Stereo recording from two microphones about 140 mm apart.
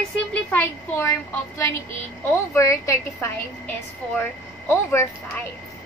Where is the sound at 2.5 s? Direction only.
20° left (ahead or behind).